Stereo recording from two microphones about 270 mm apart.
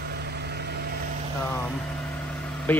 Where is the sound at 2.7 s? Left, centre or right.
Centre.